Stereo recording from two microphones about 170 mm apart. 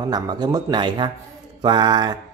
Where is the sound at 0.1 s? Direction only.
25° right (ahead or behind).